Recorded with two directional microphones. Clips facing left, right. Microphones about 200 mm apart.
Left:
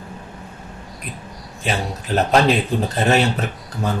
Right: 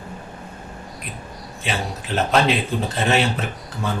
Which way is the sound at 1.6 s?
40° left (ahead or behind).